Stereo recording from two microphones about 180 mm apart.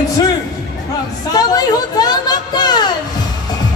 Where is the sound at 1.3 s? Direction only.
20° left (ahead or behind).